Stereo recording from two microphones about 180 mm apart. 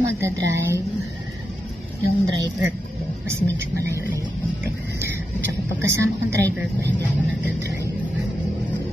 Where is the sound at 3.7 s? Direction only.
15° right (ahead or behind).